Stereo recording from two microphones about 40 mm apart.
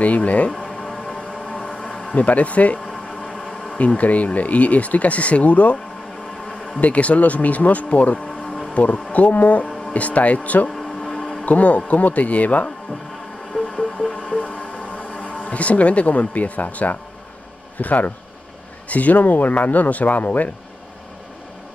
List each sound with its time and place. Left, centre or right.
0.0 s speech: left
1.1 s train: right
1.8 s a sound: left
2.1 s speech: left
6.4 s a sound: left
6.8 s speech: left
10.8 s a sound: left
11.4 s speech: left
13.7 s vehicle: left
14.1 s music: left
15.4 s speech: left